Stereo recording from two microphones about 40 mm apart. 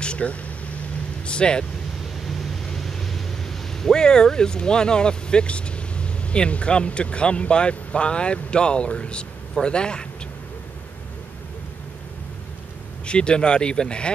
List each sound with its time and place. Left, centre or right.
0.0 s a sound: left
1.2 s speech: left
2.8 s speech: centre; by 10.0 s left
13.0 s speech: left